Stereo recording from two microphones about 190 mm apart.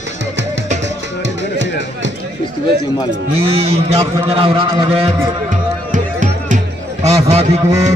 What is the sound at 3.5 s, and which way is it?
A man's voice, 30° right (ahead or behind).